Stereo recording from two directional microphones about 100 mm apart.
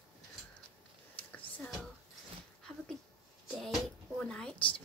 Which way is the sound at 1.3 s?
15° left (ahead or behind).